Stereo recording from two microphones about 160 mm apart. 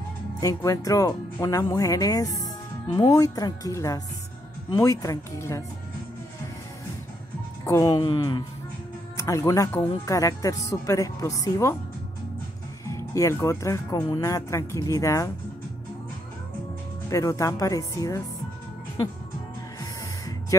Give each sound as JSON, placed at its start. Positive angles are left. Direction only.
{"t": 0.4, "sound": "speech", "side_deg": 20}
{"t": 7.6, "sound": "speech", "side_deg": 20}
{"t": 12.8, "sound": "speech", "side_deg": 20}
{"t": 17.1, "sound": "speech", "side_deg": 20}
{"t": 19.8, "sound": "music", "side_deg": 20}